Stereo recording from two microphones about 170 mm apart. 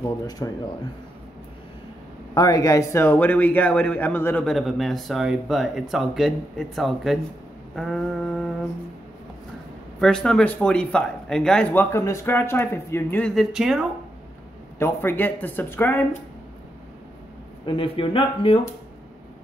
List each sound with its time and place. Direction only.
0.0 s speech: 20° left (ahead or behind)
2.3 s a man's voice: 20° left (ahead or behind); by 8.5 s centre (ahead or behind)
9.9 s speech: 5° left (ahead or behind)
13.3 s a man's voice: centre (ahead or behind)
14.8 s speech: 15° left (ahead or behind)
17.6 s speech: 30° left (ahead or behind)